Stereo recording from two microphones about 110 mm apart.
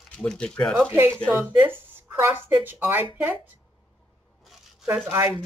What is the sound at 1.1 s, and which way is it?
Speech, 10° left (ahead or behind).